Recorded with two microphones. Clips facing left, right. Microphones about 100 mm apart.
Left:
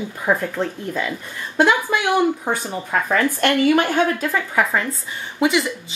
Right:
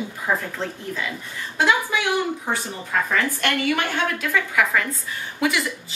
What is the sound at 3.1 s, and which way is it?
A woman's voice, 40° left (ahead or behind).